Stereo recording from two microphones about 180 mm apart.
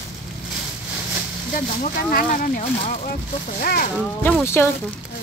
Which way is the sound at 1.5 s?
50° left (ahead or behind).